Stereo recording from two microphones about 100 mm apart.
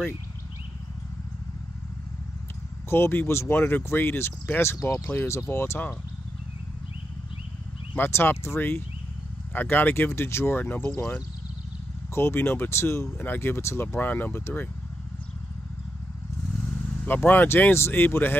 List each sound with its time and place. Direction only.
2.9 s speech: 25° left (ahead or behind)
7.9 s speech: 20° left (ahead or behind)
12.1 s speech: 25° left (ahead or behind)
17.0 s speech: 20° left (ahead or behind)